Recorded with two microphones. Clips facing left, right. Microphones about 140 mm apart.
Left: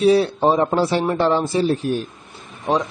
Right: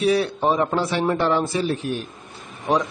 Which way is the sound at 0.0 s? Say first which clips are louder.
Left 4 dB; 30° left (ahead or behind).